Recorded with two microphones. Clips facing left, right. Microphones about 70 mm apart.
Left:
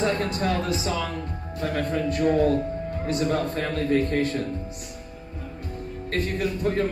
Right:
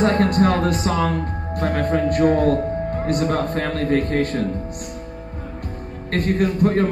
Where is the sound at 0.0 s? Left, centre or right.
Right.